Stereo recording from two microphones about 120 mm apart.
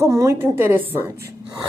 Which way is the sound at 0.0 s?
25° right (ahead or behind).